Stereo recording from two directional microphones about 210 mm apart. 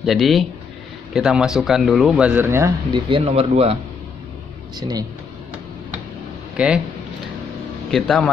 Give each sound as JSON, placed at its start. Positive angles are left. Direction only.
{"t": 0.0, "sound": "speech", "side_deg": 0}
{"t": 3.1, "sound": "speech", "side_deg": -25}
{"t": 4.7, "sound": "speech", "side_deg": -20}
{"t": 6.5, "sound": "speech", "side_deg": -5}
{"t": 7.9, "sound": "speech", "side_deg": 0}